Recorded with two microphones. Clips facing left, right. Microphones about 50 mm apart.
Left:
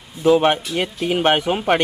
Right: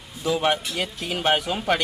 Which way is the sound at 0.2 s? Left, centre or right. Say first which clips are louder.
Left 8 dB; left.